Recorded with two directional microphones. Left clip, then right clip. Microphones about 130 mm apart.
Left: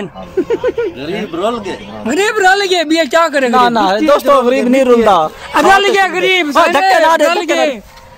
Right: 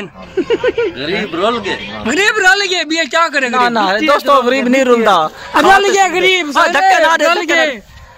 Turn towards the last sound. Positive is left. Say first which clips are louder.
# even
turn(degrees=-5)  # may be behind; listen again after turning